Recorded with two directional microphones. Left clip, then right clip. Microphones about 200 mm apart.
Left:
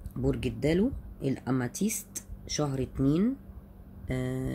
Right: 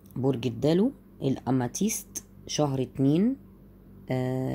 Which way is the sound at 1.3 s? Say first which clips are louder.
Right 4 dB; 20° right (ahead or behind).